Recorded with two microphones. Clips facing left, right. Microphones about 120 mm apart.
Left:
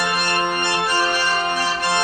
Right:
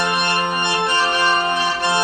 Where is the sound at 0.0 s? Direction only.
Centre (ahead or behind).